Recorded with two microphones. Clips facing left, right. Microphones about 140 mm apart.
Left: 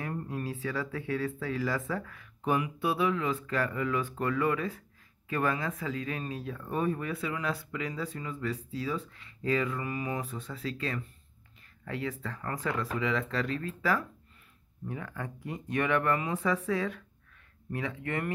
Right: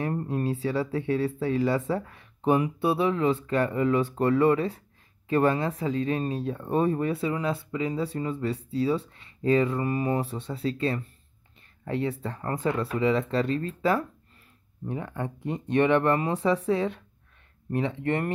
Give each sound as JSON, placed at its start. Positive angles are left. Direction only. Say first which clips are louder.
{"t": 0.0, "sound": "speech", "louder": "right 7 dB", "side_deg": -35}